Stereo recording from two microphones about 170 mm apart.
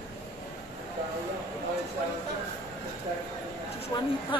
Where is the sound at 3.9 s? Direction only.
25° left (ahead or behind).